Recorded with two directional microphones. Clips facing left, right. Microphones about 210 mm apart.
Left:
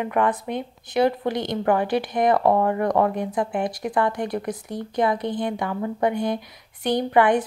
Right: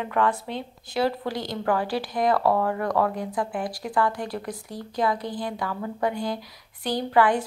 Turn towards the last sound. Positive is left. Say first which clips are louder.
# left 3 dB
turn(degrees=20)  # may be behind; listen again after turning